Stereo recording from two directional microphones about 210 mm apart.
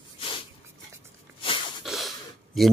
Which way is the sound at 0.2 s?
25° left (ahead or behind).